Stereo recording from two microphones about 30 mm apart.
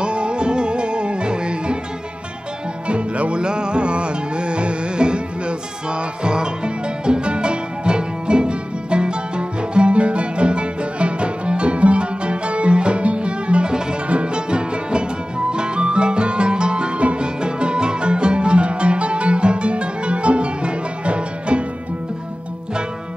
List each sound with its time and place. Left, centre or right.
0.0 s music: right
2.9 s music: right